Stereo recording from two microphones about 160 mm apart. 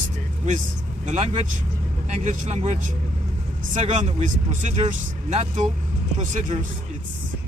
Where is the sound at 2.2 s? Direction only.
50° right (ahead or behind).